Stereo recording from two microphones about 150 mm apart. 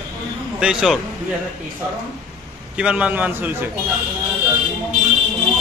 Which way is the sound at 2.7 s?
10° right (ahead or behind).